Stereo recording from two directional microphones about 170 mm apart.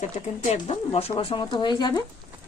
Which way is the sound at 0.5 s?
35° left (ahead or behind).